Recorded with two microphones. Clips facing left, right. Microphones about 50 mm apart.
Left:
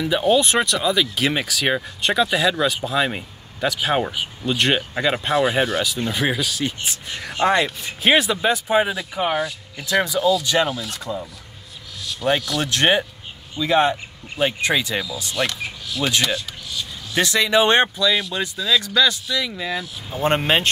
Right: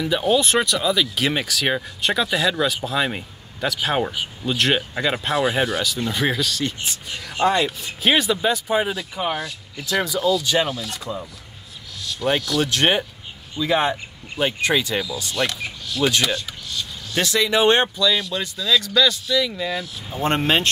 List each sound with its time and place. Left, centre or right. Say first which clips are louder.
0.0 s speech: left 2 dB; centre
7.3 s speech: left 1 dB; left
8.2 s speech: left 1 dB; centre
10.1 s speech: even; centre
17.4 s speech: left 2 dB; centre
17.9 s speech: left 1 dB; centre